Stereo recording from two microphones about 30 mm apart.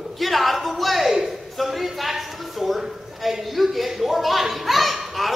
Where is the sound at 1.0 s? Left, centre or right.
Centre.